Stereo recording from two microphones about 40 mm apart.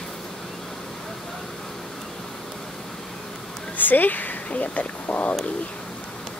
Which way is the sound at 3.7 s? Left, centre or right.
Left.